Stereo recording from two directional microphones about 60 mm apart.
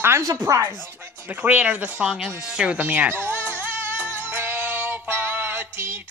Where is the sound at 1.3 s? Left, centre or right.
Right.